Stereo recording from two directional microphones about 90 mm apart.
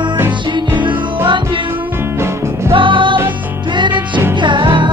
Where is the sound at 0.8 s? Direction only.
60° right (ahead or behind).